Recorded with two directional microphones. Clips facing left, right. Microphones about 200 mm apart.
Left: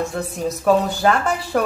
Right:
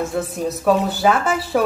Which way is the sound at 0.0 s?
Centre (ahead or behind).